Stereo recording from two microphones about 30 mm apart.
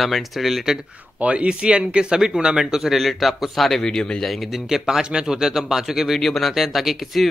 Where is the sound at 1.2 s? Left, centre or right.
Right.